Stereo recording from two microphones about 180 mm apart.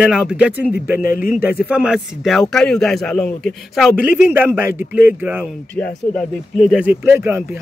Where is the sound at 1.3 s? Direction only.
10° right (ahead or behind).